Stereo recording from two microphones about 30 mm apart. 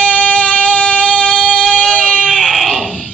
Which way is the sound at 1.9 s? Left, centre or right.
Right.